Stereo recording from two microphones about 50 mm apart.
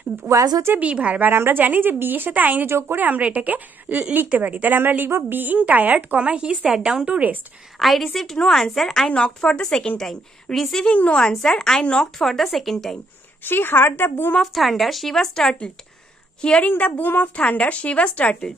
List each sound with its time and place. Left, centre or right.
0.7 s a woman's voice: right
1.3 s speech: right
2.6 s a woman's voice: right
3.0 s speech: right
6.1 s a woman's voice: right
7.8 s a woman's voice: centre
9.1 s a woman's voice: centre
10.9 s a woman's voice: left
12.2 s speech: centre
13.4 s a woman's voice: left
14.4 s a woman's voice: centre
16.6 s a woman's voice: left